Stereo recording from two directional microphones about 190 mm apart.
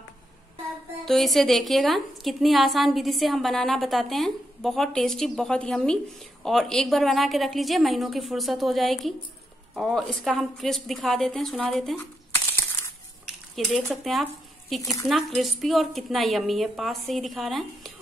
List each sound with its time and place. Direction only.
1.0 s a woman's voice: centre (ahead or behind)
13.7 s a woman's voice: centre (ahead or behind)
14.8 s speech: 15° left (ahead or behind)
15.0 s a woman's voice: centre (ahead or behind)